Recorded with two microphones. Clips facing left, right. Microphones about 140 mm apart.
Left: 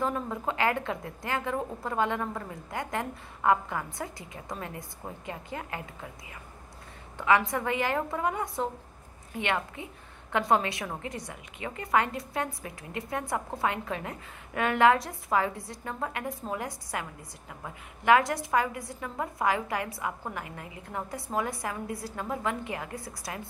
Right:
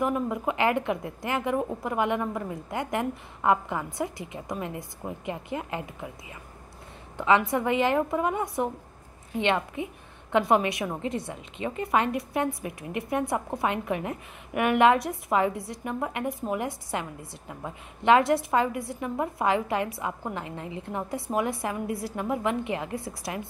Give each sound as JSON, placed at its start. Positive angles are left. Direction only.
{"t": 0.0, "sound": "a woman's voice", "side_deg": -15}
{"t": 7.2, "sound": "a woman's voice", "side_deg": -20}